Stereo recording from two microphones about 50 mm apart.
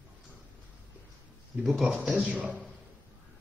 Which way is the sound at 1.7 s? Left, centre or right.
Centre.